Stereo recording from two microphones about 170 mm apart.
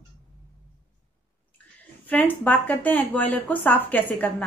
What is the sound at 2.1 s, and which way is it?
A woman's voice, 10° left (ahead or behind).